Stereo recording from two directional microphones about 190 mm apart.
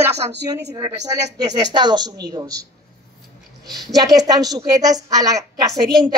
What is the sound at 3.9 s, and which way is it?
A woman's voice, 20° right (ahead or behind).